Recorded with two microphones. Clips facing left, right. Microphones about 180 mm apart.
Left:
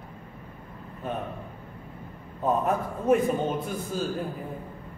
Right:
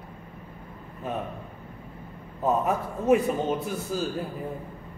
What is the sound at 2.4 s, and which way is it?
Speech, 5° right (ahead or behind).